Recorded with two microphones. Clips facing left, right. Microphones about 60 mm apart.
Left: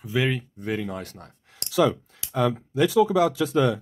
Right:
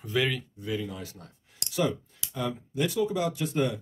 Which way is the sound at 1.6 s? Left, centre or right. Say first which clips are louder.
Left 7 dB; left.